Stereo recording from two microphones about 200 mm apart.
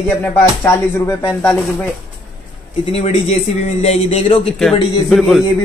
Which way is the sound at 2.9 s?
30° left (ahead or behind).